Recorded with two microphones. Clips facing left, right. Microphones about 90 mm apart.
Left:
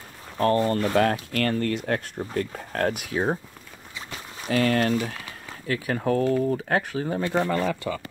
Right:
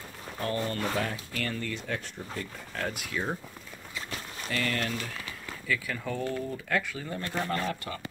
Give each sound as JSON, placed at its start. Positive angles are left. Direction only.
{"t": 0.4, "sound": "speech", "side_deg": 45}
{"t": 0.9, "sound": "speech", "side_deg": 65}
{"t": 4.5, "sound": "speech", "side_deg": 70}